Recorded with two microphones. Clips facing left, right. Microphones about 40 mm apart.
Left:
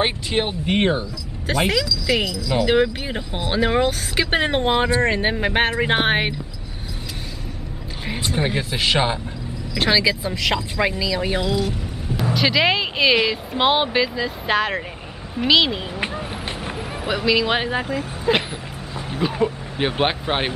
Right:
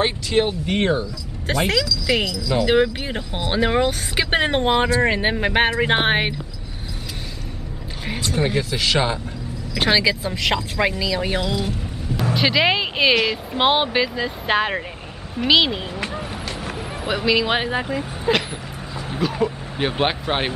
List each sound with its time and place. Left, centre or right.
0.0 s speech: centre
1.5 s speech: centre
2.6 s speech: centre
8.2 s speech: centre
9.8 s speech: centre
18.9 s a sound: centre
19.9 s speech: centre